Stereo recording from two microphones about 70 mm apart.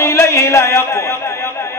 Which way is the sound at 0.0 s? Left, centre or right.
Left.